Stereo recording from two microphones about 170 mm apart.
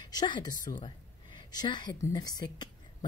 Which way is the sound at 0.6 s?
50° left (ahead or behind).